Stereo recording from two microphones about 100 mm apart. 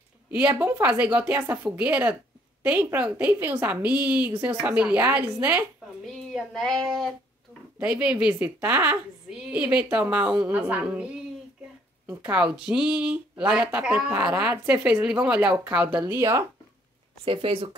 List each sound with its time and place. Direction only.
0.3 s a woman's voice: 15° right (ahead or behind)
6.0 s child singing: 5° left (ahead or behind)
7.8 s speech: 10° right (ahead or behind)
12.1 s speech: 15° right (ahead or behind)
16.2 s speech: 30° right (ahead or behind)
17.2 s speech: 65° right (ahead or behind)